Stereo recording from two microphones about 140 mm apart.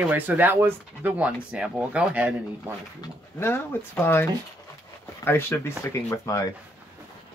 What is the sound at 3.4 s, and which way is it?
Speech, 15° left (ahead or behind).